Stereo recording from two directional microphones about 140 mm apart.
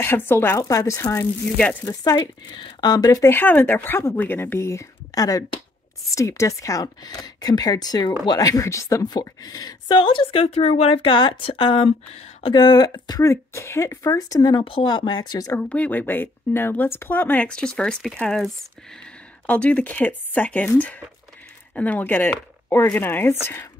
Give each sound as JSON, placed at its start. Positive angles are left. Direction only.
{"t": 0.0, "sound": "a woman's voice", "side_deg": 15}
{"t": 12.5, "sound": "speech", "side_deg": 30}
{"t": 15.7, "sound": "speech", "side_deg": 10}